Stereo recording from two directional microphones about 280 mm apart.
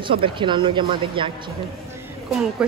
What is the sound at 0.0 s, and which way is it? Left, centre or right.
A man's voice, centre.